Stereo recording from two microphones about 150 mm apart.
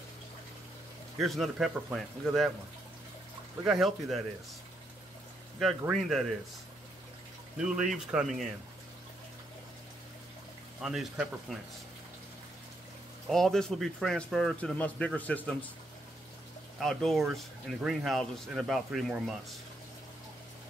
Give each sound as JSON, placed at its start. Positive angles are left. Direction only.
{"t": 1.2, "sound": "speech", "side_deg": 0}
{"t": 3.6, "sound": "speech", "side_deg": 0}
{"t": 5.6, "sound": "speech", "side_deg": 0}
{"t": 7.5, "sound": "speech", "side_deg": -5}
{"t": 10.8, "sound": "speech", "side_deg": -5}
{"t": 13.3, "sound": "speech", "side_deg": 5}
{"t": 16.8, "sound": "speech", "side_deg": 0}